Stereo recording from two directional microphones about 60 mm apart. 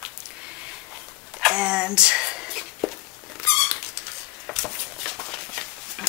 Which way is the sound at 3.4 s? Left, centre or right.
Centre.